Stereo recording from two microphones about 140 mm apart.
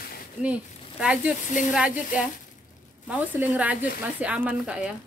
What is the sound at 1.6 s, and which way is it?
Speech, 65° left (ahead or behind).